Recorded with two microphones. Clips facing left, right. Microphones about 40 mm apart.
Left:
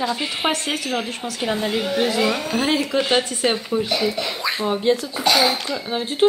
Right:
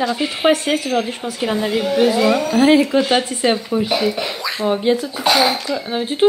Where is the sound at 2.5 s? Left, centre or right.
Centre.